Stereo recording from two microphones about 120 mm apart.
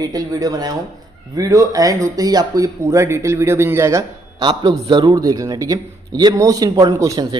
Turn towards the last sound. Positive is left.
turn(degrees=-30)  # may be behind; listen again after turning